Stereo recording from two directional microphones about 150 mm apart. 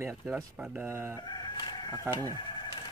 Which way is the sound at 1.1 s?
30° left (ahead or behind).